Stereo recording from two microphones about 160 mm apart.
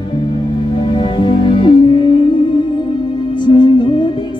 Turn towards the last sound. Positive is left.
turn(degrees=30)  # may be behind; listen again after turning